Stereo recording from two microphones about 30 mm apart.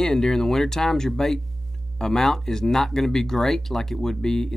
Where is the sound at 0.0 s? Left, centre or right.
Centre.